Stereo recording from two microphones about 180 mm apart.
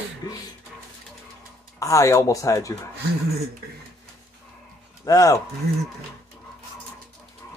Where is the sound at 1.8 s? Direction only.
20° left (ahead or behind).